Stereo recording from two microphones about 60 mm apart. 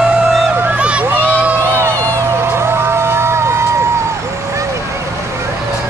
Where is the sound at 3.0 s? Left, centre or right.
Right.